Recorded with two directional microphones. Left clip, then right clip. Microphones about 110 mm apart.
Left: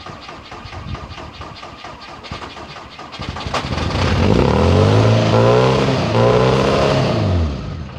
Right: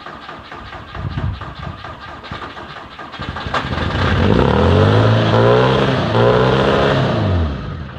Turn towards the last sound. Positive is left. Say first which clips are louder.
# right 1 dB
turn(degrees=25)  # may be behind; listen again after turning